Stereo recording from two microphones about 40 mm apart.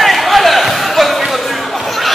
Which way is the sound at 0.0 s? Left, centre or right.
Centre.